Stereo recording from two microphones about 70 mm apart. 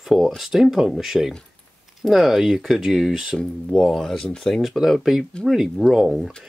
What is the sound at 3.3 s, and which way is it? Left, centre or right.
Speech, centre.